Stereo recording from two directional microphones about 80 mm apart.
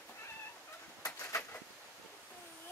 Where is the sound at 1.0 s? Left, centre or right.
Left.